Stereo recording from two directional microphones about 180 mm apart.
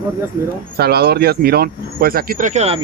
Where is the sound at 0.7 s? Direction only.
60° right (ahead or behind); by 2.8 s 40° right (ahead or behind).